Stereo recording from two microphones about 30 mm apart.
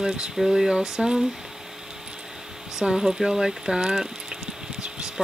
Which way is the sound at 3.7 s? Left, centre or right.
Right.